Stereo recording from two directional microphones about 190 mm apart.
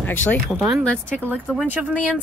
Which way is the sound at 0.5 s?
10° right (ahead or behind).